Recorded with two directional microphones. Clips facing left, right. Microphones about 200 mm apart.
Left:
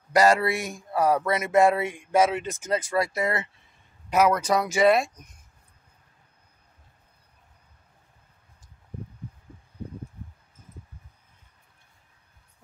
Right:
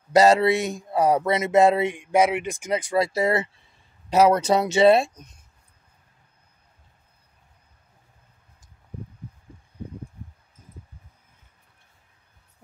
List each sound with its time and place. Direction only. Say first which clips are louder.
0.1 s speech: right 4 dB; 25° right (ahead or behind)